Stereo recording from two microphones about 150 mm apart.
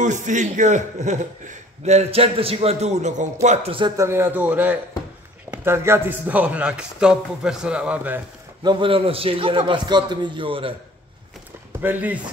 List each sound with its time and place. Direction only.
0.0 s a man's voice: 55° right (ahead or behind)
3.4 s a man's voice: 40° right (ahead or behind)
3.9 s speech: 20° right (ahead or behind)
8.6 s a man's voice: 35° right (ahead or behind)
11.8 s speech: 10° right (ahead or behind)